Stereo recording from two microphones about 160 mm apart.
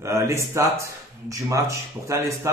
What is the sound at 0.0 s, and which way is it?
Speech, 20° right (ahead or behind).